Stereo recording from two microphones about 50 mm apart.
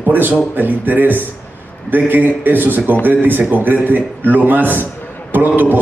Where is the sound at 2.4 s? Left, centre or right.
Right.